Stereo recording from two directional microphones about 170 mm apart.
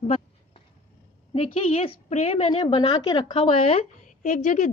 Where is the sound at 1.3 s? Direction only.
40° left (ahead or behind).